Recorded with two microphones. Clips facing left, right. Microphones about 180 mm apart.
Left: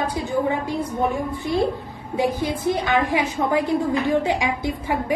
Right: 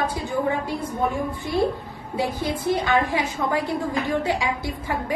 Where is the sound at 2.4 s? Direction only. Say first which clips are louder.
Left 1 dB; 15° left (ahead or behind).